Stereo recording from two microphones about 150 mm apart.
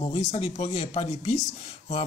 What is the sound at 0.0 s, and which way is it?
A man's voice, 40° left (ahead or behind).